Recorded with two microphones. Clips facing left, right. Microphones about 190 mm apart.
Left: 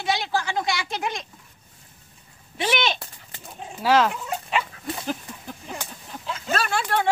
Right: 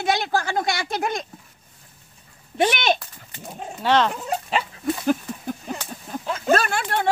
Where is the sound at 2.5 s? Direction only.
50° right (ahead or behind).